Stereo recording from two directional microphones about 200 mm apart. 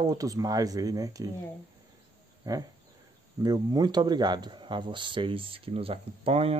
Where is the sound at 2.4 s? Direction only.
20° right (ahead or behind).